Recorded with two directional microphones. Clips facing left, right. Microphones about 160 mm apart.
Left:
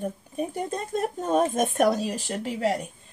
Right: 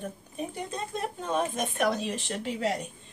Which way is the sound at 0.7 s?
50° left (ahead or behind).